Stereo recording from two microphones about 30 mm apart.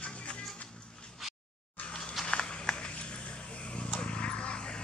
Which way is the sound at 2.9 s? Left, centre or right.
Left.